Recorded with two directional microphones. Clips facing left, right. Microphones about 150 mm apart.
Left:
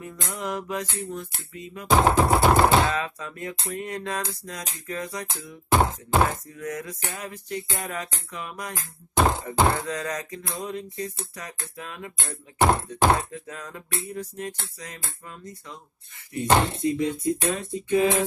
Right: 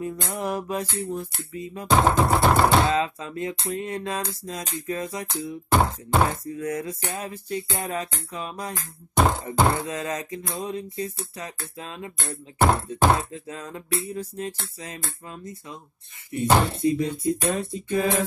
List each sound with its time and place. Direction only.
0.3 s music: 30° right (ahead or behind)
1.9 s music: centre (ahead or behind)
2.8 s music: 25° right (ahead or behind)
5.7 s a sound: centre (ahead or behind)
6.5 s music: 30° right (ahead or behind)
9.1 s music: centre (ahead or behind)
9.8 s music: 25° right (ahead or behind)
12.5 s music: centre (ahead or behind)
13.3 s music: 30° right (ahead or behind)
16.4 s speech: 10° right (ahead or behind)
16.8 s music: 30° right (ahead or behind)